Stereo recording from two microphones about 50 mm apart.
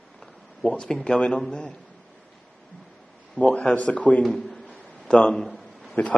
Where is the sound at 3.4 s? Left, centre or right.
Left.